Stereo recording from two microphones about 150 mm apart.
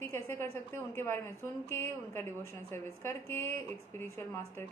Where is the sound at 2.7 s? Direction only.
15° left (ahead or behind).